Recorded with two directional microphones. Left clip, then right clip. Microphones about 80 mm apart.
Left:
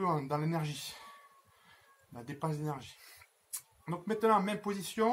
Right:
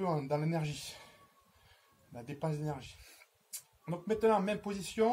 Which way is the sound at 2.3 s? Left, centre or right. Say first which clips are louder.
Left 1 dB; right.